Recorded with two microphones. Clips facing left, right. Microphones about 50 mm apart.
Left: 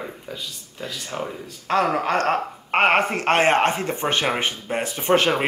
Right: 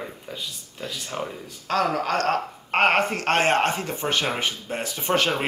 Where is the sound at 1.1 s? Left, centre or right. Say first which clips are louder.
Left 2 dB; centre.